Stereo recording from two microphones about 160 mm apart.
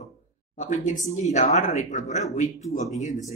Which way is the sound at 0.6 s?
50° left (ahead or behind).